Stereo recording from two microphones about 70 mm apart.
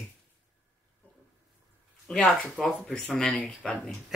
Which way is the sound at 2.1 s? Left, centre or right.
Centre.